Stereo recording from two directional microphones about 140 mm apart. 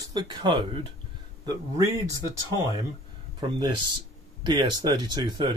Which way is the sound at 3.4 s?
35° right (ahead or behind).